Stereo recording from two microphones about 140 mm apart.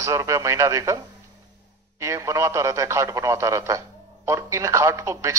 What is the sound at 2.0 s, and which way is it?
Speech, 20° right (ahead or behind).